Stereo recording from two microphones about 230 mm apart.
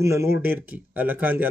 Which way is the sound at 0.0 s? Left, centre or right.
Centre.